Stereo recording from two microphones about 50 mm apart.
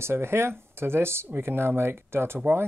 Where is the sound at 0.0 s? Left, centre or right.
Right.